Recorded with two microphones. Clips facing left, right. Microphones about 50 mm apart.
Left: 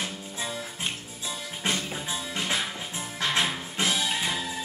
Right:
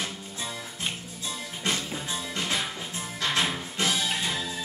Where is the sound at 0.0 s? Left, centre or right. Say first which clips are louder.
Left 1 dB; centre.